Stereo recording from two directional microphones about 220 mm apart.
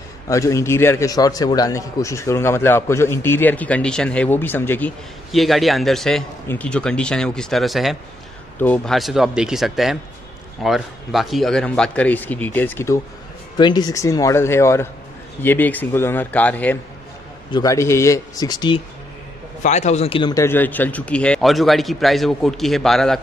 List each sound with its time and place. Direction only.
0.3 s a man's voice: 15° left (ahead or behind)
19.6 s speech: 30° left (ahead or behind); by 23.2 s centre (ahead or behind)